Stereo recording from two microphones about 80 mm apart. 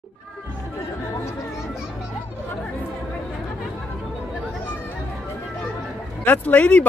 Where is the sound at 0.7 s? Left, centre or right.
Left.